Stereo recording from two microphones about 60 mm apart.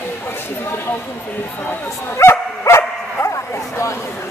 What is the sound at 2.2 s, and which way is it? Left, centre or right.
Bow-wow, left.